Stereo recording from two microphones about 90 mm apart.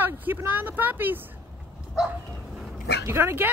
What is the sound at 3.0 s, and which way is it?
Speech, 25° right (ahead or behind).